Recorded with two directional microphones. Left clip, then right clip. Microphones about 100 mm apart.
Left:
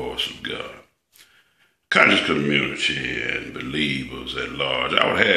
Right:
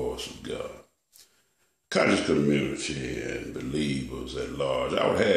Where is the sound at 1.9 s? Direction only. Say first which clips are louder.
Left 7 dB; 25° right (ahead or behind).